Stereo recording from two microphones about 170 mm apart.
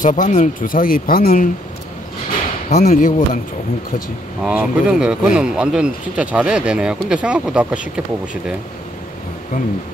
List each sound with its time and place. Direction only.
0.0 s speech: 50° left (ahead or behind)
2.7 s speech: 50° left (ahead or behind)
4.4 s speech: 5° right (ahead or behind)